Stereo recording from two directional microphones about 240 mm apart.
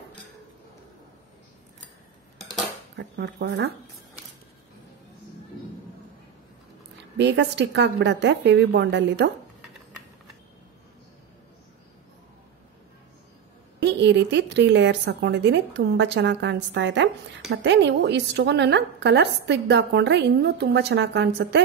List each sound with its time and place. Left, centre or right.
3.0 s a woman's voice: right
7.2 s a woman's voice: right
13.8 s a woman's voice: right